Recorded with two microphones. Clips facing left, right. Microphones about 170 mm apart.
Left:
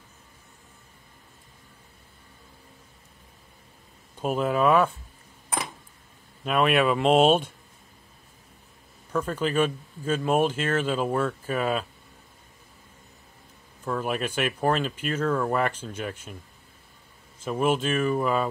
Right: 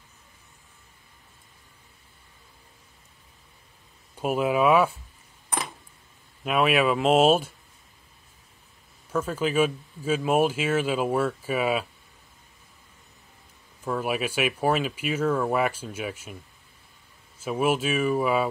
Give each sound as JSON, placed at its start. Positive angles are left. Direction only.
{"t": 4.2, "sound": "speech", "side_deg": -5}
{"t": 6.4, "sound": "speech", "side_deg": -5}
{"t": 9.1, "sound": "speech", "side_deg": -5}
{"t": 13.8, "sound": "speech", "side_deg": -5}
{"t": 17.4, "sound": "speech", "side_deg": -5}